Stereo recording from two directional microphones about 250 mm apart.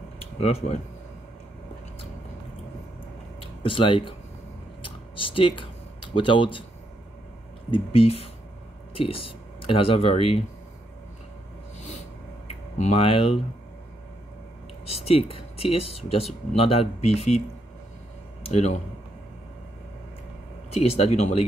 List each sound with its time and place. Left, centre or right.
0.4 s speech: left
3.6 s speech: left
4.8 s typing: left
6.1 s speech: left
7.7 s speech: left
12.4 s speech: left
14.9 s speech: left
18.5 s speech: left
20.7 s speech: left